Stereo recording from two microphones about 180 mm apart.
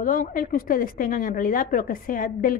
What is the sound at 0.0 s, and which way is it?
A woman's voice, 50° left (ahead or behind).